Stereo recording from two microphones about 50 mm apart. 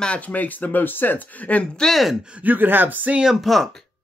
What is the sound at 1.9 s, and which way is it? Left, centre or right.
Speech, centre.